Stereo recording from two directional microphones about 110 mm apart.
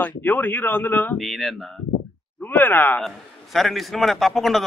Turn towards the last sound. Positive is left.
turn(degrees=0)  # may be behind; listen again after turning